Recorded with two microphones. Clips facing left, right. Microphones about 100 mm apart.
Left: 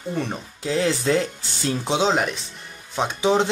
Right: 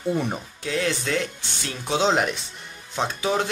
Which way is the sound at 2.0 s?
Centre (ahead or behind).